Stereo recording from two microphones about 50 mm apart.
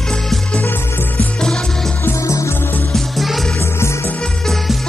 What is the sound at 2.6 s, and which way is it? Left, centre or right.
Music, left.